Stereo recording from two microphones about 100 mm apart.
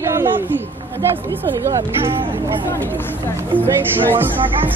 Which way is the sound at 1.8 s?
55° right (ahead or behind).